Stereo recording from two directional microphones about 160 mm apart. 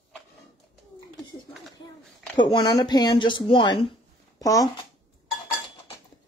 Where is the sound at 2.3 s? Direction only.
30° left (ahead or behind).